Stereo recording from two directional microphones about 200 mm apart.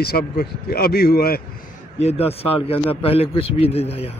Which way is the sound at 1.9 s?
30° left (ahead or behind).